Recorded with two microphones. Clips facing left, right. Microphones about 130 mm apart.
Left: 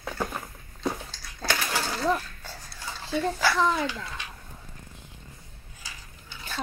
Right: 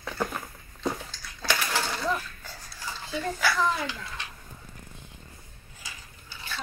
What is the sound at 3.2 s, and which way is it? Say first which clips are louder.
Speech: left 2 dB; 25° left (ahead or behind).